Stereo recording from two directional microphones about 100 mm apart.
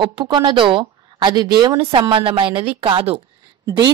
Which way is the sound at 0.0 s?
55° right (ahead or behind).